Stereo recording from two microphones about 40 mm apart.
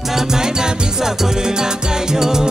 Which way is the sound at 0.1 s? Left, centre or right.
Centre.